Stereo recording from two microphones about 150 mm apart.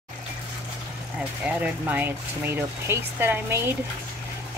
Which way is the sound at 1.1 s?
10° right (ahead or behind).